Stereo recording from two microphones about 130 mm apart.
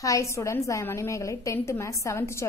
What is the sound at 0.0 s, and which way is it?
A woman's voice, 25° left (ahead or behind).